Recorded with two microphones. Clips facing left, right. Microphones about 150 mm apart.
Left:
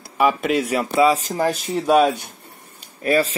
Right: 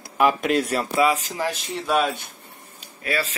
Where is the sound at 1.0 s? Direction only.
40° left (ahead or behind).